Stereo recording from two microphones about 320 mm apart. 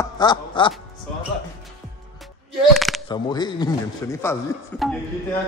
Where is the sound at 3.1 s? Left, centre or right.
Centre.